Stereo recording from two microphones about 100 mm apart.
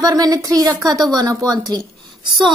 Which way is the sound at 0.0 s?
35° right (ahead or behind).